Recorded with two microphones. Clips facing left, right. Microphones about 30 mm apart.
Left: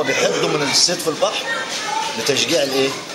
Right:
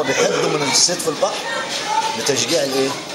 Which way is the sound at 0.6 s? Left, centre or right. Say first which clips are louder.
Even; left.